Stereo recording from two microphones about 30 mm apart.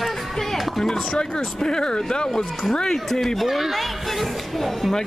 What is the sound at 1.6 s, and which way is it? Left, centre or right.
Speech, left.